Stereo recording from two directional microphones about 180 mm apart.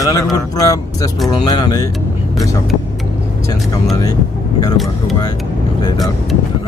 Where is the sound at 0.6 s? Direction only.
20° left (ahead or behind).